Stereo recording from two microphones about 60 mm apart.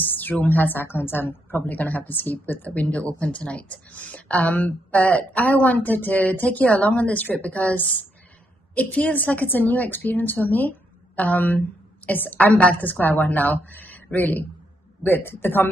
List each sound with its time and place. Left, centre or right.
0.0 s a woman's voice: left